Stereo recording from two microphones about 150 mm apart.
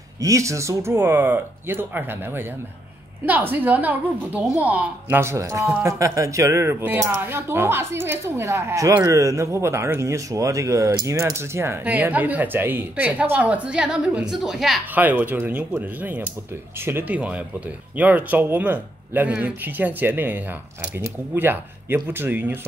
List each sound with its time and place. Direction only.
0.2 s speech: 20° right (ahead or behind)